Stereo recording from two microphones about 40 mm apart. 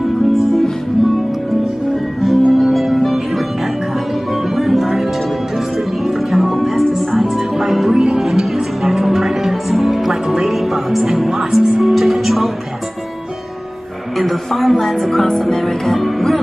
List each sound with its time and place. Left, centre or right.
0.3 s music: centre
2.2 s music: centre
4.6 s music: centre
6.0 s music: centre
7.9 s music: centre
8.2 s music: centre
14.1 s speech: centre